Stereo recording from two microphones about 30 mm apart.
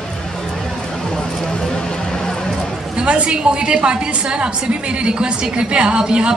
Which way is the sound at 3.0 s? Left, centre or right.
Right.